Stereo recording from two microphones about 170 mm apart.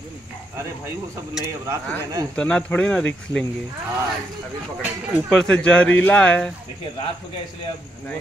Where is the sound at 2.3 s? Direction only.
5° left (ahead or behind).